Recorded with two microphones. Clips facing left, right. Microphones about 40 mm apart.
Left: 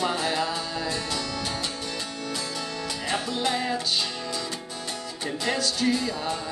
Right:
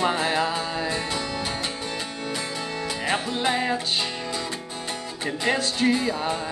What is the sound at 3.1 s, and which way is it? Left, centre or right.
Music, right.